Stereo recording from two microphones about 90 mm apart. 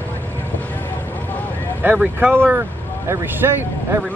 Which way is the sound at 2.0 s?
20° right (ahead or behind).